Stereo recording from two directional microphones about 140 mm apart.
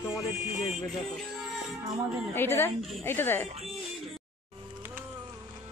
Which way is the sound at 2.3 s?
15° left (ahead or behind).